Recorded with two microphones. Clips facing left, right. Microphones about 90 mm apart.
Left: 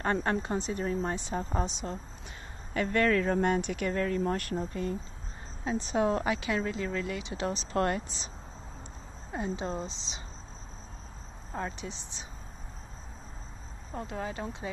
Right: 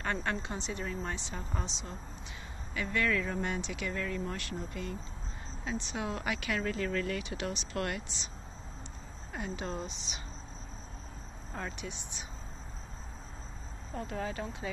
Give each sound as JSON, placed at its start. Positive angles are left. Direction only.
{"t": 0.0, "sound": "speech", "side_deg": 35}
{"t": 9.3, "sound": "speech", "side_deg": 30}
{"t": 11.5, "sound": "speech", "side_deg": 25}
{"t": 13.9, "sound": "speech", "side_deg": 20}